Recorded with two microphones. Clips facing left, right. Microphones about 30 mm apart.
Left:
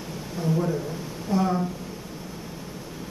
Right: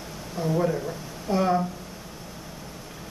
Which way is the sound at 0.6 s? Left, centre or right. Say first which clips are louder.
Right 1 dB; centre.